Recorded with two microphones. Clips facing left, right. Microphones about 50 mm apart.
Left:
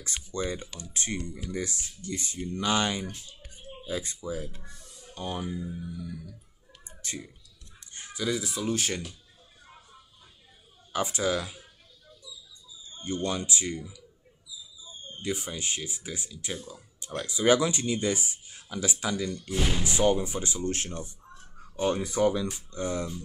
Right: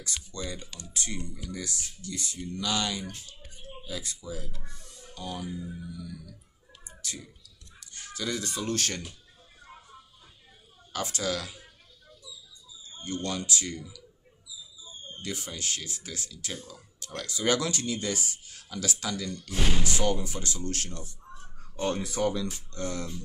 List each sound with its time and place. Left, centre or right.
0.0 s speech: left
7.9 s a sound: left
8.2 s speech: centre
10.9 s speech: left
13.0 s speech: left
15.2 s speech: centre
21.5 s speech: centre